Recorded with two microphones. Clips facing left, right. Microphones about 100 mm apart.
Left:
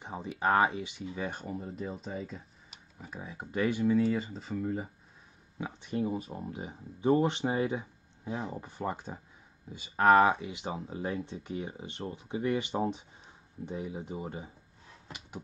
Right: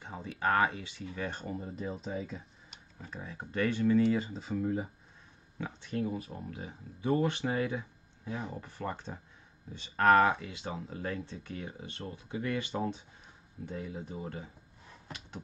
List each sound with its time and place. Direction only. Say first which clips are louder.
0.0 s speech: left 2 dB; 20° left (ahead or behind); by 2.8 s centre (ahead or behind)
3.0 s speech: left 1 dB; 10° left (ahead or behind)
5.6 s speech: left 2 dB; 15° left (ahead or behind)